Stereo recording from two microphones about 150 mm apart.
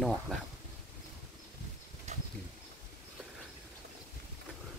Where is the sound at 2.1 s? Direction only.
50° right (ahead or behind).